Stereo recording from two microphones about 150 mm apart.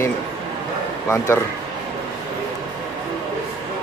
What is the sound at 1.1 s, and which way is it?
Speech, 20° left (ahead or behind).